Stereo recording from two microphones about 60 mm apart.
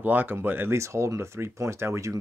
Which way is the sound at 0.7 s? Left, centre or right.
Right.